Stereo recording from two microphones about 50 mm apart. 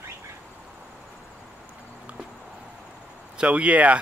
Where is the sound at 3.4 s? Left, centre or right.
Right.